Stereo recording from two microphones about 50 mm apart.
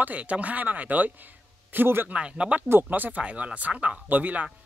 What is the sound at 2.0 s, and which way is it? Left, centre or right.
Speech, right.